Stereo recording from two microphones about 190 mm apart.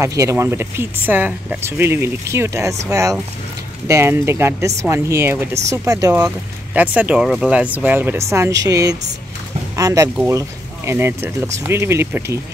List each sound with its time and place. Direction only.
0.0 s speech: 15° right (ahead or behind)